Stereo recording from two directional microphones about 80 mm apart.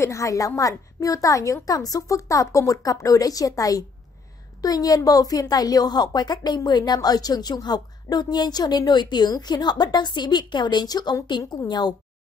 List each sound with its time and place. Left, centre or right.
0.0 s a woman's voice: left